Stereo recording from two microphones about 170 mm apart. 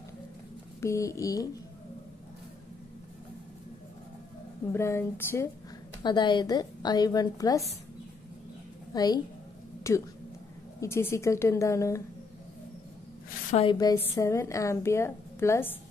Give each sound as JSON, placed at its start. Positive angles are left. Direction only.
{"t": 0.7, "sound": "a woman's voice", "side_deg": 15}
{"t": 4.7, "sound": "a woman's voice", "side_deg": 15}
{"t": 6.0, "sound": "a woman's voice", "side_deg": 25}
{"t": 8.9, "sound": "a woman's voice", "side_deg": 25}
{"t": 13.7, "sound": "a woman's voice", "side_deg": 20}